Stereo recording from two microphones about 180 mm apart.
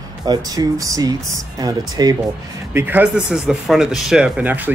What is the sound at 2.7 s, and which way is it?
Speech, 10° right (ahead or behind).